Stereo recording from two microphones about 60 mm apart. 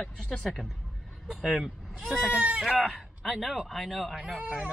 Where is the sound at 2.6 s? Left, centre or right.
Centre.